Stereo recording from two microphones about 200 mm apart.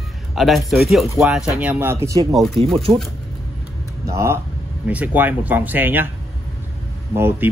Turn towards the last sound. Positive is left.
turn(degrees=-10)  # may be behind; listen again after turning